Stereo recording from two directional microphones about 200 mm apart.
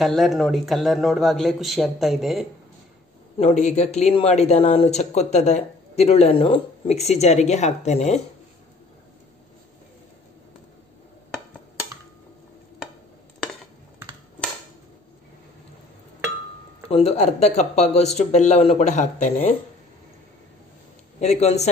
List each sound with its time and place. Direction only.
0.0 s a man's voice: centre (ahead or behind)
3.3 s speech: 35° left (ahead or behind)
16.9 s speech: 30° left (ahead or behind)
21.2 s speech: 35° left (ahead or behind)